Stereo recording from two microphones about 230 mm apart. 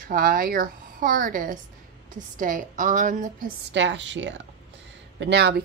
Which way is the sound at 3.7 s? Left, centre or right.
Right.